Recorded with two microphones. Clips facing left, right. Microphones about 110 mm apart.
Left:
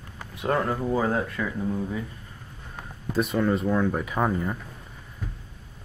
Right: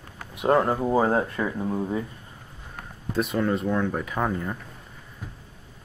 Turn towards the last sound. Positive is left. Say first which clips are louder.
# left 1 dB
turn(degrees=5)  # may be behind; listen again after turning